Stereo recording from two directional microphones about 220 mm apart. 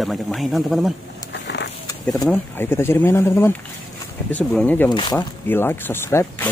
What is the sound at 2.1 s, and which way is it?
Speech, 15° left (ahead or behind).